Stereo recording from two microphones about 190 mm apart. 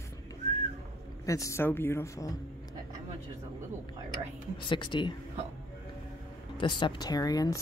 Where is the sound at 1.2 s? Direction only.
15° left (ahead or behind).